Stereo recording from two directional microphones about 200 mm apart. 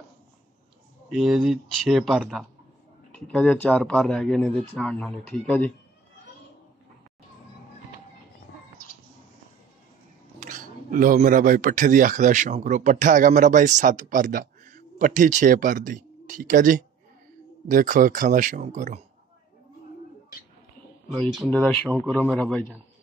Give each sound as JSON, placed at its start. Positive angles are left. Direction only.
{"t": 1.1, "sound": "speech", "side_deg": -5}
{"t": 10.4, "sound": "speech", "side_deg": -40}
{"t": 21.2, "sound": "speech", "side_deg": 5}